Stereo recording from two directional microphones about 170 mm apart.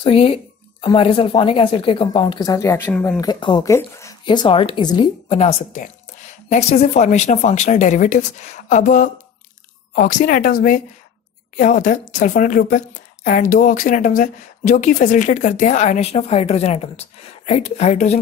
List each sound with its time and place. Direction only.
0.0 s speech: 30° left (ahead or behind); by 3.2 s 10° left (ahead or behind)
3.2 s a woman's voice: 25° left (ahead or behind)